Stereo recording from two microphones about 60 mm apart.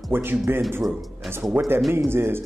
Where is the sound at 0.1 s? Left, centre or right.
Right.